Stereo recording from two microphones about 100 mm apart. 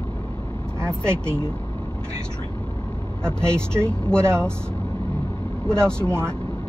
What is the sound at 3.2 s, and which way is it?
Speech, 10° left (ahead or behind).